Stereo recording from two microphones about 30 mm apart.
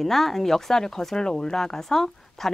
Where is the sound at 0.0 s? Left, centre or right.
Centre.